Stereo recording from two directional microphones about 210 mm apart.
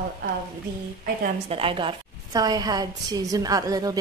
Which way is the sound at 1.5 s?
25° right (ahead or behind).